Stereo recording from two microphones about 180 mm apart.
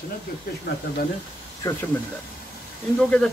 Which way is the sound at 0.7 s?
70° left (ahead or behind).